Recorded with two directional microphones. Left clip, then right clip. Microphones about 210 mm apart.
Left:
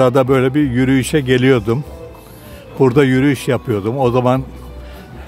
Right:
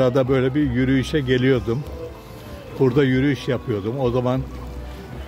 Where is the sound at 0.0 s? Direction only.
35° left (ahead or behind).